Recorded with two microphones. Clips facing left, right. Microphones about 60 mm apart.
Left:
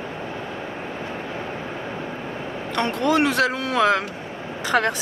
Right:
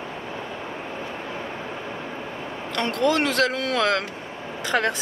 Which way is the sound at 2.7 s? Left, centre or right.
Centre.